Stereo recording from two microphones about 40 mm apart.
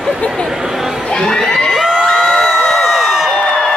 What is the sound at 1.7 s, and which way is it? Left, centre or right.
Crowd, centre.